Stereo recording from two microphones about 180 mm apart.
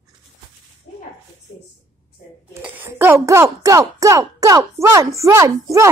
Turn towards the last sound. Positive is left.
turn(degrees=-15)  # may be behind; listen again after turning